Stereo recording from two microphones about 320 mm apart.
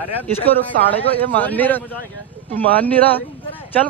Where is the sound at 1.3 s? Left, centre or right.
Centre.